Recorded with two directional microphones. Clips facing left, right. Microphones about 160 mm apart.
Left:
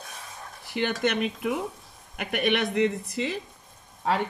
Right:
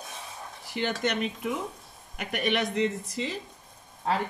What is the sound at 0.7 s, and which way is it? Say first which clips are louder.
Speech: left 3 dB; 60° left (ahead or behind).